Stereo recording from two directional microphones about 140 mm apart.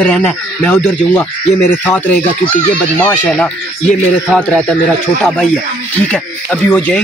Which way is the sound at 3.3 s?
10° left (ahead or behind).